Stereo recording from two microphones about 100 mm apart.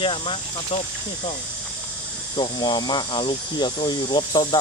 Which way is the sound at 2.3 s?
50° left (ahead or behind).